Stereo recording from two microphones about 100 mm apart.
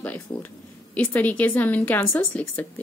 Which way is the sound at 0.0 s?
15° left (ahead or behind).